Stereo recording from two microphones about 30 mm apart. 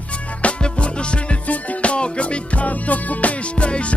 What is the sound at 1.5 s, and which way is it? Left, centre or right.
Music, left.